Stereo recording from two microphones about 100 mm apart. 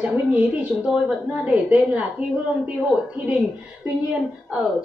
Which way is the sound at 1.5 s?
15° right (ahead or behind).